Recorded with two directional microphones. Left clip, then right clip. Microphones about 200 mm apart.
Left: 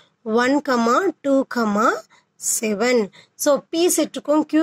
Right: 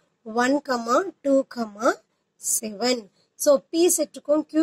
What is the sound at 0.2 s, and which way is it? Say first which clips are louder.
Speech: left 4 dB; 35° left (ahead or behind).